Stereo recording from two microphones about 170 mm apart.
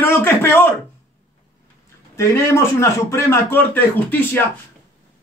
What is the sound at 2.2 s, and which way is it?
Speech, 15° left (ahead or behind).